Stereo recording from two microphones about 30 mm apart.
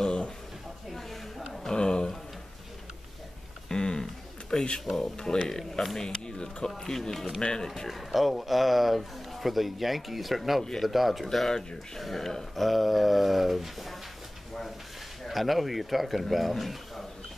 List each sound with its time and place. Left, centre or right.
0.0 s a sound: left
0.9 s a sound: centre
1.7 s a sound: left
3.6 s a sound: left
5.1 s speech: left
5.9 s speech: left
6.8 s speech: centre
7.6 s speech: centre
7.9 s speech: centre
11.5 s speech: centre
12.0 s speech: centre
15.2 s speech: centre